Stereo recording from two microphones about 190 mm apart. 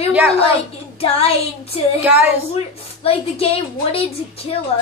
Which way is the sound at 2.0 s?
10° right (ahead or behind).